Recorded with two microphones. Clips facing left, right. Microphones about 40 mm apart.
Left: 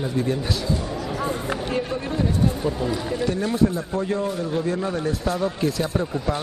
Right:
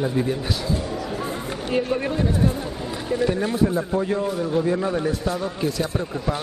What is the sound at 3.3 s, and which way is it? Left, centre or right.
Speech, centre.